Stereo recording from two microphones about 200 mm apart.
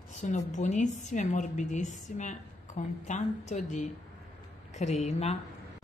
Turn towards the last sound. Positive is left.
turn(degrees=35)  # may be behind; listen again after turning